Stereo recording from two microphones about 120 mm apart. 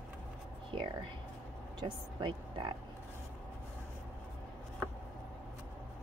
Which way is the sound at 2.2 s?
40° right (ahead or behind).